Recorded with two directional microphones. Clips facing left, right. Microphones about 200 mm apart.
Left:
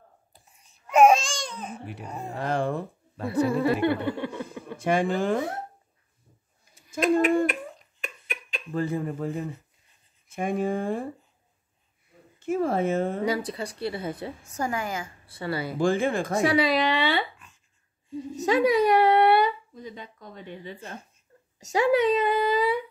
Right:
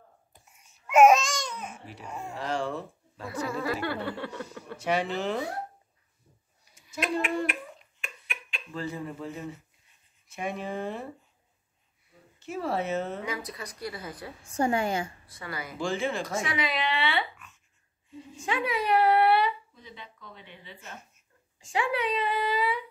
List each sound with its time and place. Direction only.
0.3 s babbling: 35° left (ahead or behind)
2.0 s speech: 35° left (ahead or behind)
2.3 s speech: 55° left (ahead or behind)
3.3 s a sound: 25° left (ahead or behind)
4.7 s speech: 50° left (ahead or behind)
6.9 s speech: 45° left (ahead or behind)
8.0 s finger snapping: 40° left (ahead or behind)
10.2 s speech: 50° left (ahead or behind)
12.4 s speech: 50° left (ahead or behind)
13.2 s a sound: 30° left (ahead or behind)
14.5 s a woman's voice: 30° right (ahead or behind)
15.2 s speech: 30° left (ahead or behind)
15.8 s speech: 50° left (ahead or behind)
16.3 s speech: 35° left (ahead or behind)